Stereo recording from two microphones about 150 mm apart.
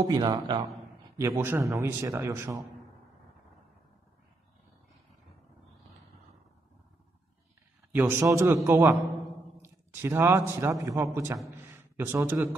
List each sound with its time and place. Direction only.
0.1 s a man's voice: 25° right (ahead or behind)
7.9 s a man's voice: 15° right (ahead or behind)
11.7 s a sound: 15° right (ahead or behind)